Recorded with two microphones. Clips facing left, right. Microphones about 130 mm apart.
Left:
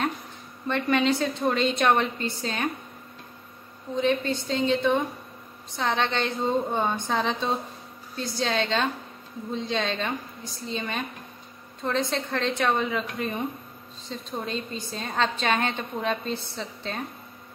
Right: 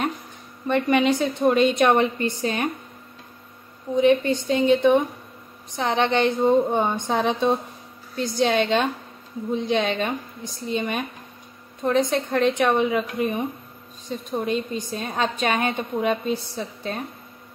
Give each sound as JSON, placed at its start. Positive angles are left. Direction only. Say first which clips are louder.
{"t": 0.7, "sound": "a woman's voice", "louder": "right 4 dB", "side_deg": -15}
{"t": 3.9, "sound": "a woman's voice", "louder": "right 6 dB", "side_deg": -15}